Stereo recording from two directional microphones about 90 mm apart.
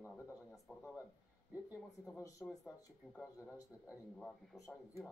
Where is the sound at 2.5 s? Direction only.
5° left (ahead or behind).